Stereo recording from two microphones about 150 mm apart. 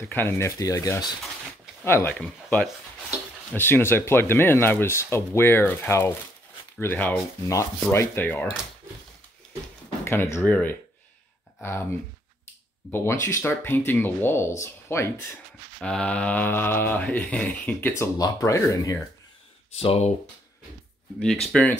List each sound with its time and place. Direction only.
0.1 s speech: 15° left (ahead or behind)
1.9 s mantra: 15° left (ahead or behind)
2.1 s speech: 5° left (ahead or behind)
3.5 s mantra: 15° left (ahead or behind)
10.0 s speech: 15° left (ahead or behind)
10.4 s mantra: 10° left (ahead or behind)
12.9 s mantra: 20° left (ahead or behind)
15.8 s mantra: 5° left (ahead or behind)
19.8 s speech: 40° left (ahead or behind)
21.2 s speech: centre (ahead or behind)